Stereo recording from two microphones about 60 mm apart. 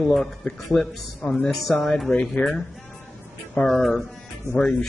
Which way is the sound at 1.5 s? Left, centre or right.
Centre.